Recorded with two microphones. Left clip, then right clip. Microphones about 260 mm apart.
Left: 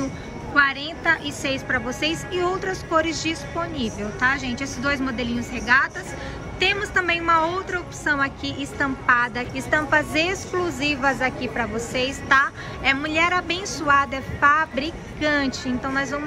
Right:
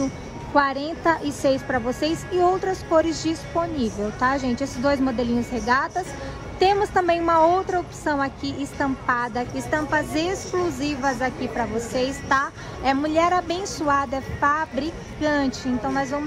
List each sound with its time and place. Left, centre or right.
0.6 s a woman's voice: centre
6.6 s a woman's voice: centre